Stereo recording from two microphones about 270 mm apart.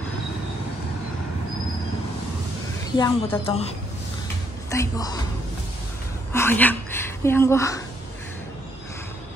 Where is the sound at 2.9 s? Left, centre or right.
Centre.